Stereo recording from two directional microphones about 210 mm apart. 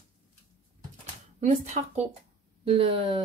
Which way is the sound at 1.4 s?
35° right (ahead or behind).